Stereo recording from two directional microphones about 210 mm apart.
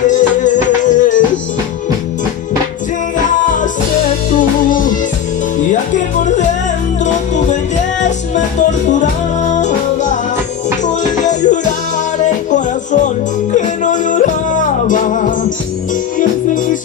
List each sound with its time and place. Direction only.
0.0 s music: 35° left (ahead or behind)
5.6 s music: 35° left (ahead or behind)
9.5 s music: 35° left (ahead or behind)